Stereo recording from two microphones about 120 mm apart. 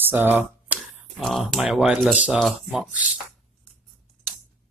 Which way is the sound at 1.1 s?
Centre (ahead or behind).